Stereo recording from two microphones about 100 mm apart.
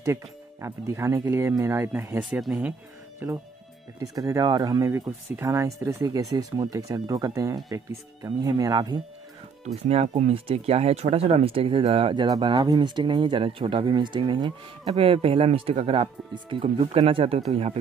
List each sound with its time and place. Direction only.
0.0 s speech: 30° right (ahead or behind)
4.1 s speech: 35° right (ahead or behind)
9.8 s speech: 90° right; by 12.2 s 70° right (ahead or behind)
12.2 s speech: 50° right (ahead or behind)
15.0 s speech: 75° right (ahead or behind)
16.4 s speech: 65° right (ahead or behind); by 17.7 s 90° right